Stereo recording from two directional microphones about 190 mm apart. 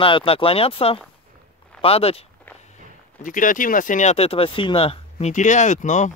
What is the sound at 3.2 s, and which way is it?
Speech, 45° left (ahead or behind).